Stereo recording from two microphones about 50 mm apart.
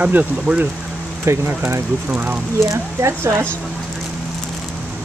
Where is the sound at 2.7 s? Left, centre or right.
Right.